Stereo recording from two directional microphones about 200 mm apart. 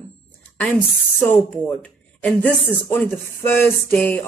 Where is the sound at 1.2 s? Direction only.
5° left (ahead or behind).